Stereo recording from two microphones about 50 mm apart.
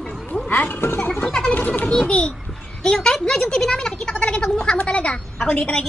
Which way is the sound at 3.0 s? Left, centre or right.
Centre.